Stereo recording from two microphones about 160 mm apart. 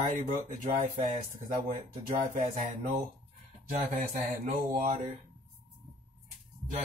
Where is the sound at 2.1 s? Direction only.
55° right (ahead or behind).